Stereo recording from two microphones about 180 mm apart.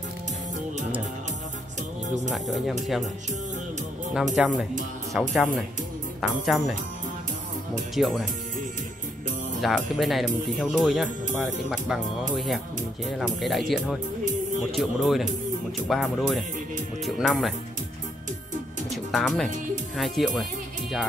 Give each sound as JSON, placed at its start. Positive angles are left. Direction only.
{"t": 2.0, "sound": "music", "side_deg": -40}
{"t": 2.3, "sound": "speech", "side_deg": 0}
{"t": 4.4, "sound": "speech", "side_deg": 0}
{"t": 7.9, "sound": "speech", "side_deg": 0}
{"t": 9.6, "sound": "speech", "side_deg": 0}
{"t": 18.9, "sound": "music", "side_deg": 0}
{"t": 20.0, "sound": "speech", "side_deg": 0}